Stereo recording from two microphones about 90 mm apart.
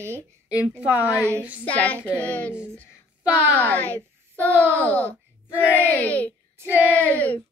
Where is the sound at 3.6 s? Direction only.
20° left (ahead or behind).